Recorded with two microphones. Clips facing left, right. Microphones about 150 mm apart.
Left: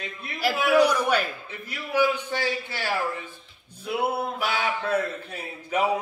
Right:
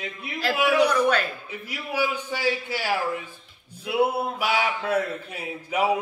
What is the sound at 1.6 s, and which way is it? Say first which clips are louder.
A man's voice: left 3 dB; 10° right (ahead or behind).